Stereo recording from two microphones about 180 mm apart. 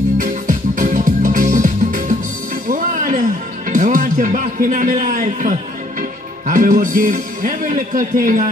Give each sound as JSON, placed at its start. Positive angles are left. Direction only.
{"t": 0.2, "sound": "music", "side_deg": -45}